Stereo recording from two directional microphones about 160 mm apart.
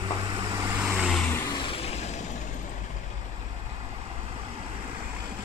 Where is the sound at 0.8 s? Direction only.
5° right (ahead or behind).